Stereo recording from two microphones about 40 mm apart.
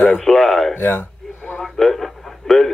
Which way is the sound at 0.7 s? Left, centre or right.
Left.